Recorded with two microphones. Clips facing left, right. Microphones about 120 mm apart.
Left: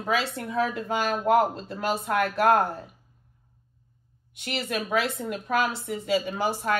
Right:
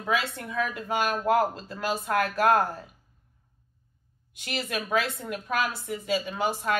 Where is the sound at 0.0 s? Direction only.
30° left (ahead or behind).